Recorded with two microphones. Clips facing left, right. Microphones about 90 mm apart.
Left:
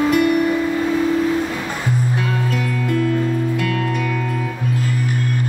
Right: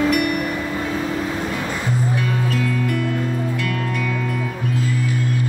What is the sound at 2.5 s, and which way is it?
Music, 25° left (ahead or behind).